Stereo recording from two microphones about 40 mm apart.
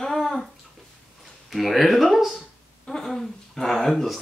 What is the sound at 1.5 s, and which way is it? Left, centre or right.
Speech, centre.